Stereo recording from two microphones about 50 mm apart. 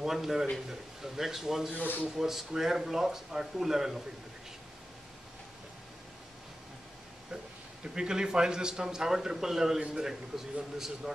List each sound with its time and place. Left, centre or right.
0.0 s a man's voice: centre
7.8 s a man's voice: centre
9.8 s a man's voice: centre
10.0 s a man's voice: centre